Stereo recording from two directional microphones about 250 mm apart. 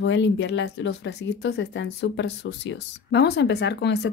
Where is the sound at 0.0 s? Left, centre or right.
Left.